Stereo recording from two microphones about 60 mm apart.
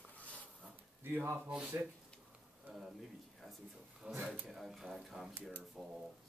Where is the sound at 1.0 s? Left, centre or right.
Right.